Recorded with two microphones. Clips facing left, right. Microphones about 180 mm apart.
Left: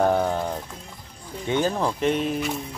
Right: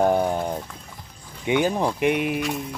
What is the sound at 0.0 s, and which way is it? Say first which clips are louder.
Run: right 1 dB; 15° right (ahead or behind).